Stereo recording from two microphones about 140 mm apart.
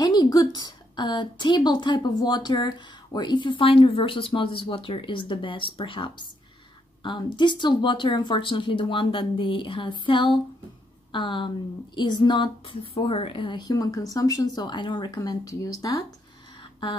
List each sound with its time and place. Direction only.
0.0 s a woman's voice: 30° left (ahead or behind)